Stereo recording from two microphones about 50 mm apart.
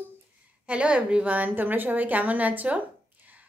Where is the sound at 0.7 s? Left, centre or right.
Right.